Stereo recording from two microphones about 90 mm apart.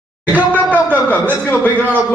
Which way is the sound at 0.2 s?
20° right (ahead or behind).